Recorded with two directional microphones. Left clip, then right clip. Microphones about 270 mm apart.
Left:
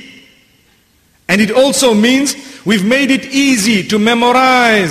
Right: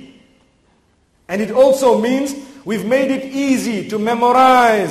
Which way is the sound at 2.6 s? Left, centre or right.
Left.